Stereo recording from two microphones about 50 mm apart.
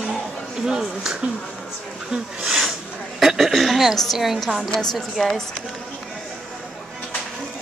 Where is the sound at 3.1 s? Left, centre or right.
Centre.